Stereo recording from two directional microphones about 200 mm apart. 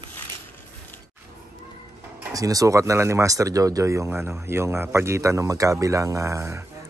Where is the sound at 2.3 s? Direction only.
15° right (ahead or behind).